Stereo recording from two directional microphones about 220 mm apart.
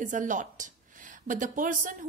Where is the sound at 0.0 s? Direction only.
35° right (ahead or behind).